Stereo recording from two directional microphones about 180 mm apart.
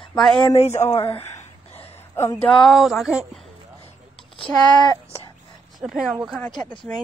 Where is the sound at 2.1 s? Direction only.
15° left (ahead or behind).